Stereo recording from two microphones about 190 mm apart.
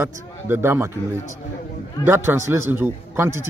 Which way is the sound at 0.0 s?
10° right (ahead or behind).